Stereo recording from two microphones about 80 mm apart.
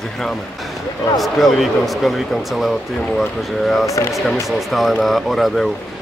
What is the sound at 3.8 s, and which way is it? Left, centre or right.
Speech, left.